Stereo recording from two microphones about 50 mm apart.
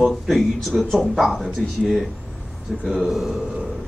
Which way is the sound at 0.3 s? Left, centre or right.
Centre.